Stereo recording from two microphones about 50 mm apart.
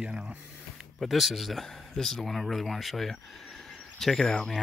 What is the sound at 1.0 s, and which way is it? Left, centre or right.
Speech, centre.